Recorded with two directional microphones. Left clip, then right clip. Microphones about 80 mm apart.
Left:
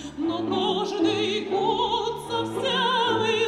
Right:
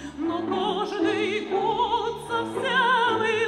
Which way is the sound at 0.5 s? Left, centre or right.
Left.